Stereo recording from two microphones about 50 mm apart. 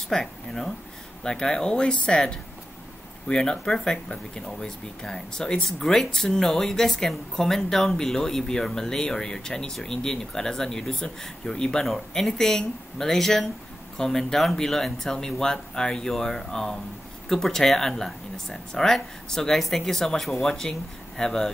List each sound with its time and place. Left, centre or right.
0.1 s speech: centre